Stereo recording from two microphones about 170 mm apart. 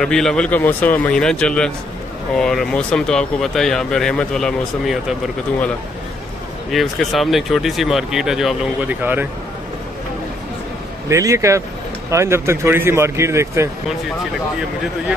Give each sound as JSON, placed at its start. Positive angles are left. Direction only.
{"t": 0.0, "sound": "speech", "side_deg": 5}
{"t": 6.7, "sound": "speech", "side_deg": 0}
{"t": 11.1, "sound": "speech", "side_deg": -20}